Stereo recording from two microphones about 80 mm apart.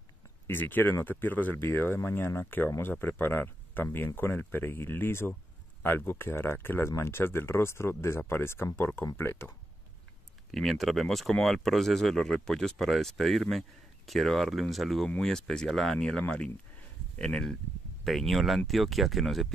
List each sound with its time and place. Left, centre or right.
0.5 s speech: left
10.5 s speech: centre